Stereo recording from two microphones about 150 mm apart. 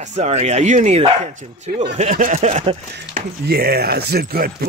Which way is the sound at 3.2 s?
90° right.